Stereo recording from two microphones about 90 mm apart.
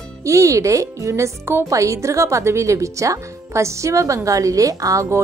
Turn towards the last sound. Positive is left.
turn(degrees=-40)  # may be behind; listen again after turning